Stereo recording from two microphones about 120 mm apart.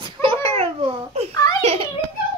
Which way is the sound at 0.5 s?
55° right (ahead or behind).